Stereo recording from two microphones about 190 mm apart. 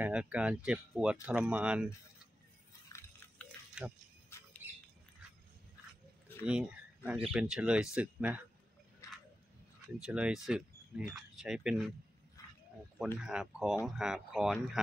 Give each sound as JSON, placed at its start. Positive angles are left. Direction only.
{"t": 0.0, "sound": "speech", "side_deg": -5}
{"t": 2.9, "sound": "a sound", "side_deg": 15}
{"t": 3.8, "sound": "speech", "side_deg": -5}
{"t": 4.3, "sound": "squawk", "side_deg": 15}
{"t": 6.4, "sound": "speech", "side_deg": -5}
{"t": 9.0, "sound": "a sound", "side_deg": 15}
{"t": 9.9, "sound": "speech", "side_deg": -5}
{"t": 13.2, "sound": "speech", "side_deg": -5}